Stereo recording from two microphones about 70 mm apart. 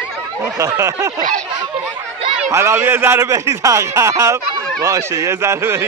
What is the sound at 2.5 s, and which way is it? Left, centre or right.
Speech, right.